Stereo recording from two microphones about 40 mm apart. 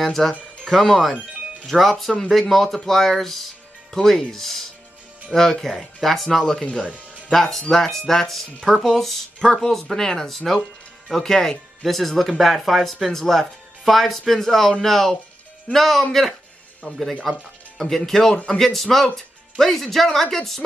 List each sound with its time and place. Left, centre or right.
0.0 s speech: centre
7.7 s speech: centre
18.3 s a man's voice: left
18.6 s speech: centre